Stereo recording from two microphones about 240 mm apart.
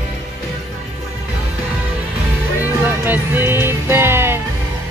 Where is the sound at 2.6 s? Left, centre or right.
Centre.